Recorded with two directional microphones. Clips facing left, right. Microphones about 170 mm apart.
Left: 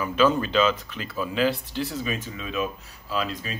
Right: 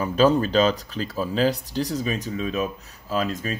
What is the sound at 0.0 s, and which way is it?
Speech, 35° right (ahead or behind).